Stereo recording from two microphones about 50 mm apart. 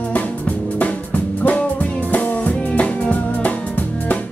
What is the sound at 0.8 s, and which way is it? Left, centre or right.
Music, left.